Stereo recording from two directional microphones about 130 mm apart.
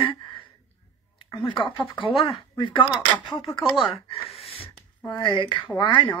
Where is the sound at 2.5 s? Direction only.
40° left (ahead or behind).